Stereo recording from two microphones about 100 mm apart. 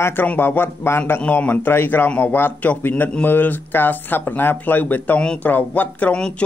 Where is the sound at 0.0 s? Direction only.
20° left (ahead or behind).